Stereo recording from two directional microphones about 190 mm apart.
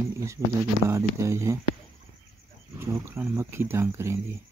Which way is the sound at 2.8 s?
15° right (ahead or behind).